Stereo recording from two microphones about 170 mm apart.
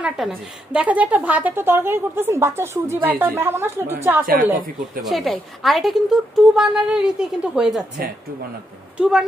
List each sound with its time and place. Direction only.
0.0 s a woman's voice: 5° right (ahead or behind)
5.0 s speech: centre (ahead or behind)
8.9 s speech: 5° right (ahead or behind)